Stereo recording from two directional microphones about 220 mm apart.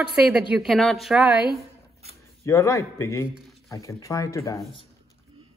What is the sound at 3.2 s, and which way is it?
Speech, 5° right (ahead or behind).